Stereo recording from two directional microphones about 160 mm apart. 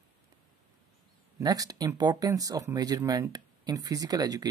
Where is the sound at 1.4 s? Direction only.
20° right (ahead or behind).